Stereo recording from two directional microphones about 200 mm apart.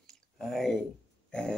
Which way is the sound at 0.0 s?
Centre (ahead or behind).